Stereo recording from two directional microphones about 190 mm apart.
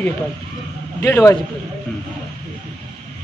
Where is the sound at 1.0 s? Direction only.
15° left (ahead or behind).